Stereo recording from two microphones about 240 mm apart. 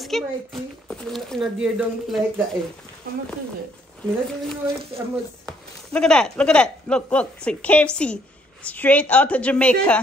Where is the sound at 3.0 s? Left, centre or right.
Right.